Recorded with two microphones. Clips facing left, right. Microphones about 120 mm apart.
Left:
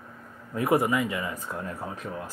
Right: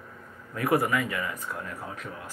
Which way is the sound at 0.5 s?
25° left (ahead or behind).